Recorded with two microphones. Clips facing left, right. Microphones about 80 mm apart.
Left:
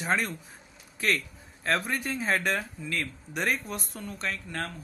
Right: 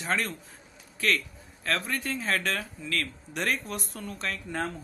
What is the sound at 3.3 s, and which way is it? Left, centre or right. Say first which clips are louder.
Speech: left 1 dB; centre.